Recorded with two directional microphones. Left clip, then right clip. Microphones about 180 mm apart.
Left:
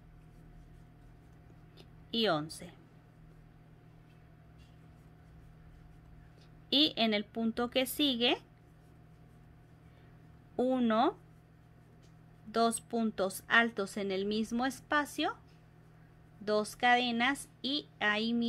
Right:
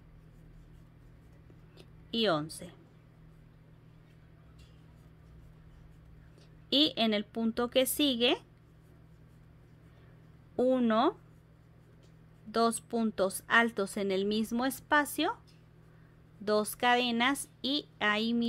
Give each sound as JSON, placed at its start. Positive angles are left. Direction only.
{"t": 1.8, "sound": "a sound", "side_deg": -15}
{"t": 6.7, "sound": "a woman's voice", "side_deg": -20}
{"t": 10.5, "sound": "speech", "side_deg": -15}
{"t": 12.4, "sound": "a woman's voice", "side_deg": -15}
{"t": 16.4, "sound": "a woman's voice", "side_deg": -25}